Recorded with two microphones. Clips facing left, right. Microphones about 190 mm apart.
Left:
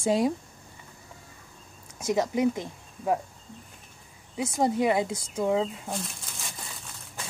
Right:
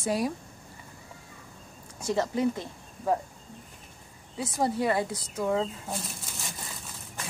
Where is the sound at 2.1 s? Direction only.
15° left (ahead or behind).